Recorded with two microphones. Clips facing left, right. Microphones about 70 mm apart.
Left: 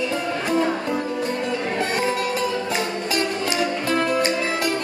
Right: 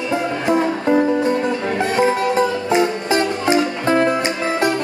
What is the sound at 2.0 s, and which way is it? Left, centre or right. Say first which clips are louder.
Music: right 7 dB; right.